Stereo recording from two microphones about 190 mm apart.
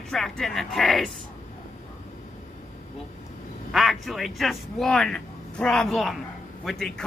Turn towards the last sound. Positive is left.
turn(degrees=0)  # may be behind; listen again after turning